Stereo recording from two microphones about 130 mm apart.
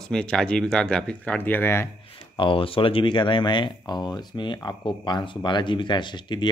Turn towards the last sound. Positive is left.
turn(degrees=35)  # may be behind; listen again after turning